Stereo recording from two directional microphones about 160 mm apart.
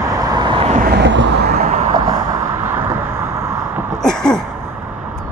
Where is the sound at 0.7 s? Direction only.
65° right (ahead or behind).